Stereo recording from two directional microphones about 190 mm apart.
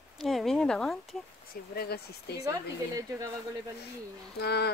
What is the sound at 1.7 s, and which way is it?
Speech, 55° left (ahead or behind).